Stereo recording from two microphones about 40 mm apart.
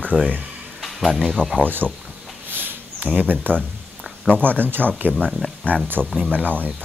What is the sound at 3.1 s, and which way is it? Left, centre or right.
Speech, right.